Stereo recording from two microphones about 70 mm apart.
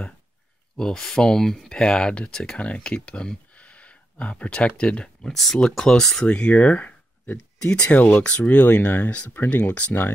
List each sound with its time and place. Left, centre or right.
0.7 s speech: centre
6.2 s speech: centre